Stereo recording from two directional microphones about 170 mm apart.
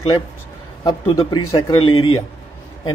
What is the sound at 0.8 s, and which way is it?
Speech, 25° left (ahead or behind).